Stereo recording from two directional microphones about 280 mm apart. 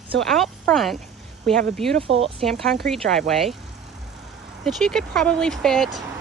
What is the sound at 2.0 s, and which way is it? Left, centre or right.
Speech, right.